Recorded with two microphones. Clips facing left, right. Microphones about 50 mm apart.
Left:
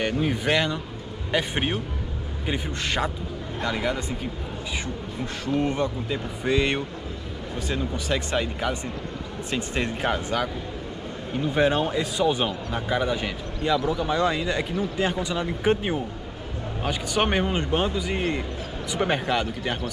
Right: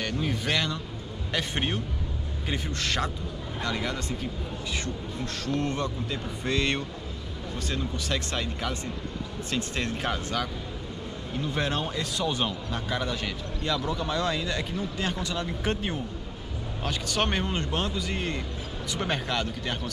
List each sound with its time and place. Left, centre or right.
0.0 s a man's voice: centre